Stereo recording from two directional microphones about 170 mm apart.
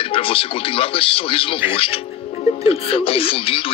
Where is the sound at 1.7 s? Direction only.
35° left (ahead or behind).